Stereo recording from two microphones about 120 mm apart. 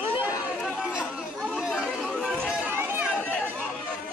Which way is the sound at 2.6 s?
15° right (ahead or behind).